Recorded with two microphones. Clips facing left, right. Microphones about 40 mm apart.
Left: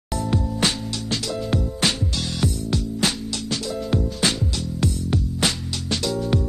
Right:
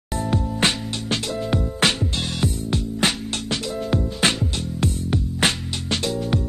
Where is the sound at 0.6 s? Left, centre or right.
Right.